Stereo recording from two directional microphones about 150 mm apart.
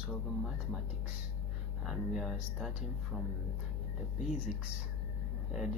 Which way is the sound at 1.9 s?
Centre (ahead or behind).